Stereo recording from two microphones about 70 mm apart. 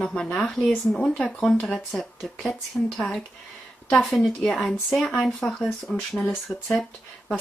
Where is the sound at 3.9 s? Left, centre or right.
Centre.